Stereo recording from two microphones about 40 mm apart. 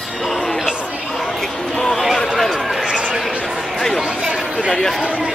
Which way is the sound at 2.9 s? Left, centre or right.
Centre.